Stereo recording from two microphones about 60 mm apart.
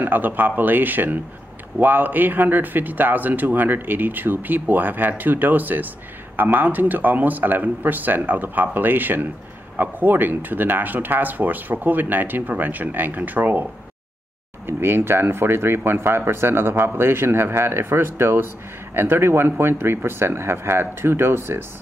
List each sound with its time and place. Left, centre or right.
0.0 s a man's voice: right
14.7 s a man's voice: right